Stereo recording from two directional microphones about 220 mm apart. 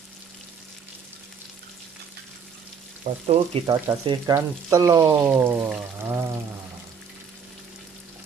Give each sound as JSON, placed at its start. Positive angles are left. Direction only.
{"t": 3.0, "sound": "frying", "side_deg": -30}